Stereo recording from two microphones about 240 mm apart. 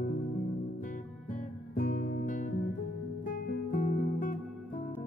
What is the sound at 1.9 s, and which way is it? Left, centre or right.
Music, left.